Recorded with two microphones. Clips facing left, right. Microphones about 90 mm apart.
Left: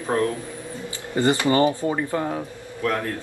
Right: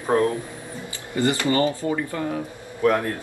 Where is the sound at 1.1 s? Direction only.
25° left (ahead or behind).